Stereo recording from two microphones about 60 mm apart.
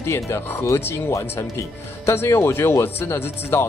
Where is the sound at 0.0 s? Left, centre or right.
Left.